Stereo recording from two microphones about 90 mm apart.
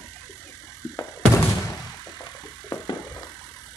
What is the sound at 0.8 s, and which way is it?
Music, 35° left (ahead or behind).